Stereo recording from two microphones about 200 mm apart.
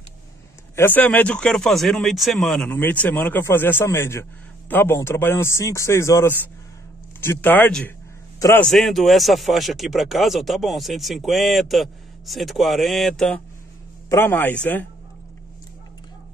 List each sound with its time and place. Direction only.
0.7 s a man's voice: 10° left (ahead or behind)
8.6 s speech: centre (ahead or behind)